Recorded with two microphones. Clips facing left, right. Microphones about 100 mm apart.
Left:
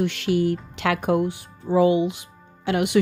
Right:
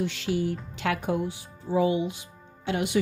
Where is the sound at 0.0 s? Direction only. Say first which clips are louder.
Left 6 dB; 65° left (ahead or behind).